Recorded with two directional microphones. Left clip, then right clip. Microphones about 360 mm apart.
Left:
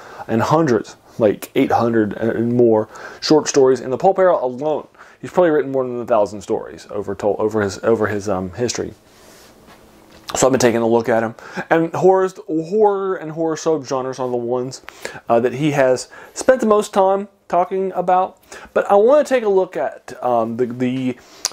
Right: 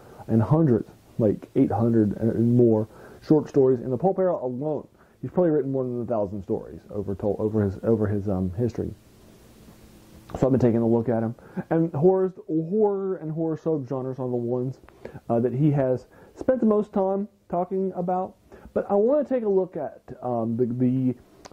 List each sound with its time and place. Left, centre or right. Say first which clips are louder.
0.0 s speech: left 8 dB; centre
4.5 s speech: left 8 dB; left
5.2 s speech: left 8 dB; centre
10.2 s speech: left 8 dB; centre
12.5 s speech: left 8 dB; left
13.0 s speech: left 7 dB; centre